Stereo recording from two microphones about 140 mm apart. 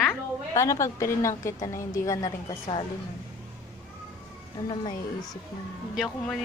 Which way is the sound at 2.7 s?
40° left (ahead or behind).